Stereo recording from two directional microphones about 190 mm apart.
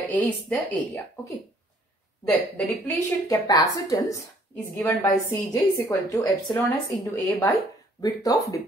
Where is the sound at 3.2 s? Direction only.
20° left (ahead or behind).